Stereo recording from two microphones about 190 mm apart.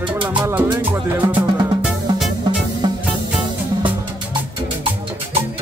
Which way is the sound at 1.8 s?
5° right (ahead or behind).